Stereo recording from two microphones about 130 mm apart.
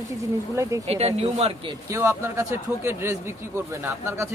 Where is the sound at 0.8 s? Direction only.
55° right (ahead or behind).